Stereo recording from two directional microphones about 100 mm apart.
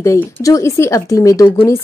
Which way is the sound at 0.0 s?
30° left (ahead or behind).